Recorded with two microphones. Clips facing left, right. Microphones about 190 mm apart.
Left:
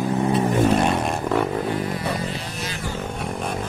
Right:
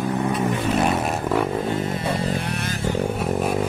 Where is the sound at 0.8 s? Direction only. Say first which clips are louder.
Even; 5° right (ahead or behind).